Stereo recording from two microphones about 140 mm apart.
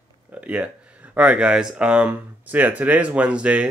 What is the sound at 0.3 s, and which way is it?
Speech, 10° right (ahead or behind).